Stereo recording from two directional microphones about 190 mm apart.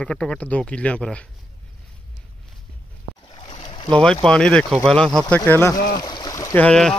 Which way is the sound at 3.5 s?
30° left (ahead or behind).